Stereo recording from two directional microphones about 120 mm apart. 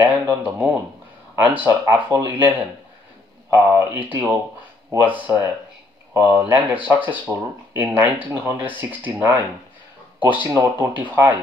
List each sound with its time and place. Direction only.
0.0 s speech: 10° right (ahead or behind)
10.5 s speech: 20° right (ahead or behind)